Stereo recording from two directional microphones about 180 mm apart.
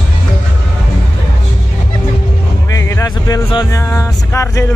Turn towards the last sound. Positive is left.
turn(degrees=15)  # may be behind; listen again after turning